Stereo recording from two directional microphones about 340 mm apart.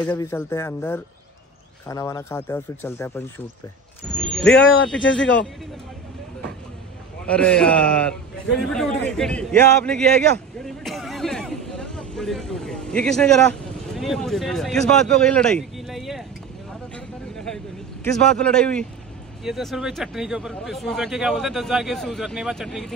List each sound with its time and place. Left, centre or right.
0.0 s speech: centre
4.6 s speech: left
7.2 s speech: centre
10.6 s a sound: centre
13.9 s speech: centre
16.9 s a sound: centre
18.0 s speech: centre